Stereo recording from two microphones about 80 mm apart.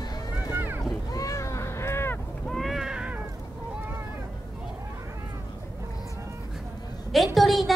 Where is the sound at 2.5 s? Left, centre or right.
Centre.